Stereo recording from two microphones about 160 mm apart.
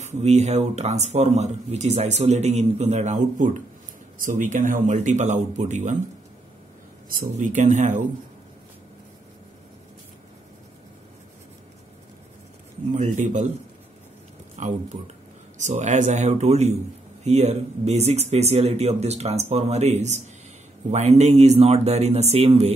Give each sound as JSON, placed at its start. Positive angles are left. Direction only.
{"t": 0.0, "sound": "speech", "side_deg": -45}
{"t": 7.2, "sound": "speech", "side_deg": -50}
{"t": 12.9, "sound": "speech", "side_deg": -50}
{"t": 14.6, "sound": "speech", "side_deg": -45}